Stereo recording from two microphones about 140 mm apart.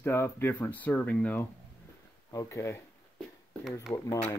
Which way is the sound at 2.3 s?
20° left (ahead or behind).